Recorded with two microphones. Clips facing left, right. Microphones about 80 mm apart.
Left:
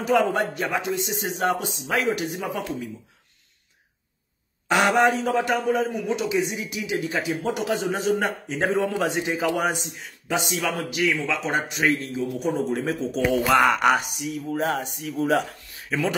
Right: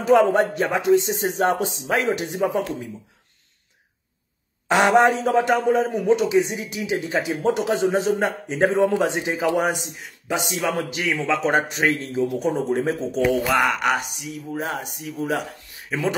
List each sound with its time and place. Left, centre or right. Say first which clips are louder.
0.0 s a man's voice: right 5 dB; right
4.6 s a man's voice: right 3 dB; right
10.7 s speech: left 1 dB; right
13.5 s speech: left 2 dB; centre
15.9 s a man's voice: right 1 dB; right